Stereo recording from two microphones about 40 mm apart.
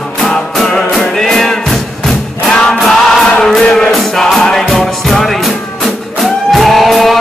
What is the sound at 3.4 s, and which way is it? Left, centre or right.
Music, centre.